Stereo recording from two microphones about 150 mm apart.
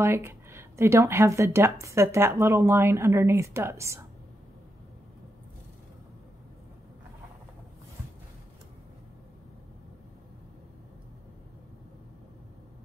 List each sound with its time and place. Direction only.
0.0 s speech: 15° right (ahead or behind)